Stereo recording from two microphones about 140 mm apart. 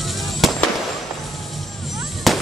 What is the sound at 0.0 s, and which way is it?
Fireworks, centre (ahead or behind).